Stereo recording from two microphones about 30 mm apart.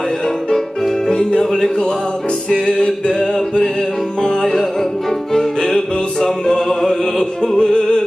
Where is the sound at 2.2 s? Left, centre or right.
Left.